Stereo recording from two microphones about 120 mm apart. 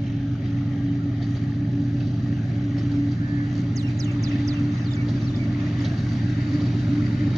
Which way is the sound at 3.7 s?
25° right (ahead or behind).